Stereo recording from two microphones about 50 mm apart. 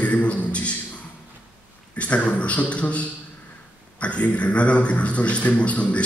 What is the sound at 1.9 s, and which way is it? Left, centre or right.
A man's voice, left.